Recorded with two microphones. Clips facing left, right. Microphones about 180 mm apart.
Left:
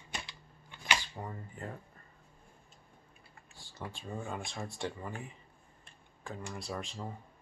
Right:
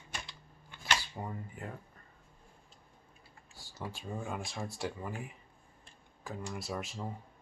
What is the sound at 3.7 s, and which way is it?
Speech, 5° right (ahead or behind).